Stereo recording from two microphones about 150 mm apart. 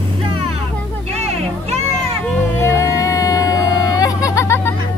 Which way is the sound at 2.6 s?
20° left (ahead or behind).